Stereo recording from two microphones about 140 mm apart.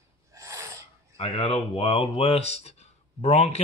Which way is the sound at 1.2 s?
40° left (ahead or behind).